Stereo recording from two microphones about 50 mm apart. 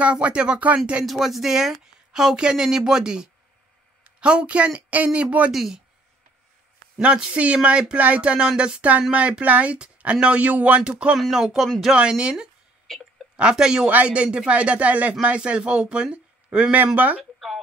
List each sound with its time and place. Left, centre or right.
0.0 s a man's voice: right
1.0 s speech: centre; by 5.5 s right
5.5 s speech: centre
7.0 s a man's voice: right
9.4 s a man's voice: right
10.8 s a man's voice: centre
11.3 s speech: centre
11.9 s a man's voice: centre
13.8 s a man's voice: right
16.7 s speech: right
17.2 s a sound: centre